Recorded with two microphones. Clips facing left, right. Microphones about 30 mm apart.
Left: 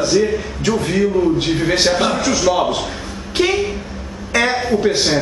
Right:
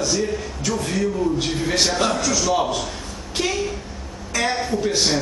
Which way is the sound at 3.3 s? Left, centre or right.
Left.